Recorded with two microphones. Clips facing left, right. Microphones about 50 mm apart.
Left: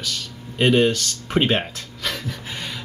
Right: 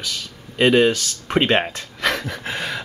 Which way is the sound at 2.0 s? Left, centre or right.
Right.